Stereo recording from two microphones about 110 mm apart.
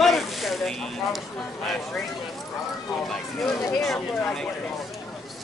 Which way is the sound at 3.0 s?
Centre (ahead or behind).